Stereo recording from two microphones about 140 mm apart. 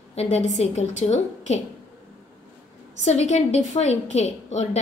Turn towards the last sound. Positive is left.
turn(degrees=55)  # may be behind; listen again after turning